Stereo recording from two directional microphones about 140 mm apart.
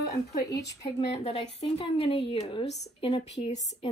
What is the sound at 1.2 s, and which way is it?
A woman's voice, 50° left (ahead or behind).